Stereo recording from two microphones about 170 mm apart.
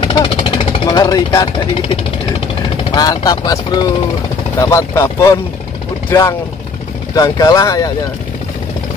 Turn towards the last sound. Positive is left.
turn(degrees=20)  # may be behind; listen again after turning